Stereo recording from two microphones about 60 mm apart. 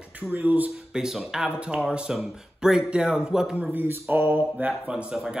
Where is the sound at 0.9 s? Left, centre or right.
Centre.